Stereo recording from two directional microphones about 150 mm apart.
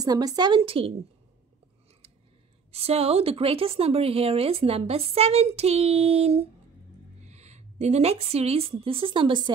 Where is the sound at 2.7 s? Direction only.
45° right (ahead or behind).